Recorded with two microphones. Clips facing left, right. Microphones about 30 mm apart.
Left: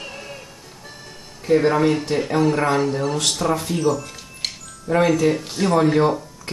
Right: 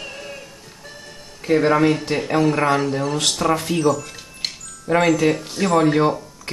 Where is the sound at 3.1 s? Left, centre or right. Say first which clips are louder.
Right 1 dB; right.